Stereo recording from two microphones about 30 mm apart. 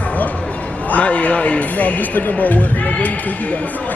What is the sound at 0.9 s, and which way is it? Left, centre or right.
A man's voice, left.